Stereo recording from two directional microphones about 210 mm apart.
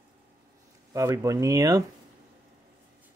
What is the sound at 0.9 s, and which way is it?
Speech, 15° right (ahead or behind).